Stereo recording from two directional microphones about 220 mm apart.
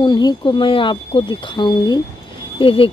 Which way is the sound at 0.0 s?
20° left (ahead or behind).